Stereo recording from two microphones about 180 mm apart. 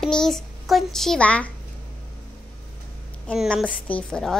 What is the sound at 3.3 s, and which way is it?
A child's voice, centre (ahead or behind).